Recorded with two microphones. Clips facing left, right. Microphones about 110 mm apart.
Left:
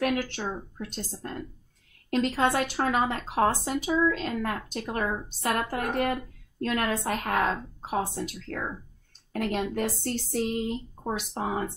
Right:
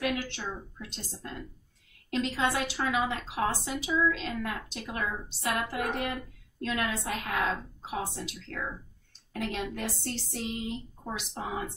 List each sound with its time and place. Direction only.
0.1 s speech: 45° left (ahead or behind)